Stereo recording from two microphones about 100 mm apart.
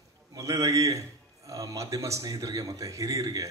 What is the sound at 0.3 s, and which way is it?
A man's voice, 35° right (ahead or behind).